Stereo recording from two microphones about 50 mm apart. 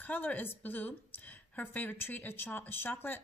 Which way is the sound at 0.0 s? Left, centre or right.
Left.